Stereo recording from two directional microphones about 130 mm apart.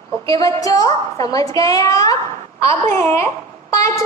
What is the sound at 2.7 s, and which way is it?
Speech, 65° right (ahead or behind).